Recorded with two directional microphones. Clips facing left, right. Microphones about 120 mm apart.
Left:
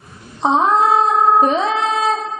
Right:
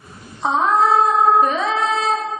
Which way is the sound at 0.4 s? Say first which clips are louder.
Left 2 dB; 25° left (ahead or behind).